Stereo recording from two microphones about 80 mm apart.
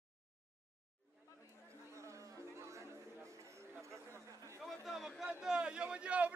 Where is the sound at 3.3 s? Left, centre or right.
Right.